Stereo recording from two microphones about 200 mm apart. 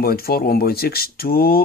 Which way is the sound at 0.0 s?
50° left (ahead or behind).